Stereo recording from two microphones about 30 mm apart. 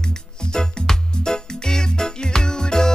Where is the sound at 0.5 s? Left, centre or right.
Left.